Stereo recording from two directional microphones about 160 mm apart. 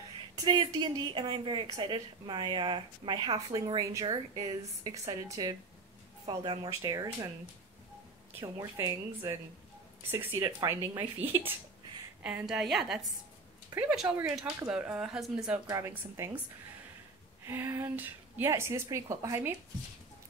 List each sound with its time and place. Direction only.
0.4 s a woman's voice: 25° right (ahead or behind)
8.5 s a woman's voice: 20° right (ahead or behind)
10.4 s a woman's voice: 25° right (ahead or behind)
11.1 s a woman's voice: 15° right (ahead or behind)
15.6 s a woman's voice: 20° right (ahead or behind)
17.5 s a woman's voice: 15° right (ahead or behind)